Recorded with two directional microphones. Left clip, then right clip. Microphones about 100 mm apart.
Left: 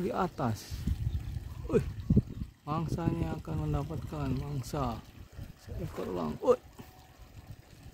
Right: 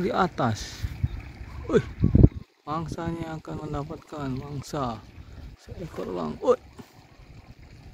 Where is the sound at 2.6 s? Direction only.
15° right (ahead or behind).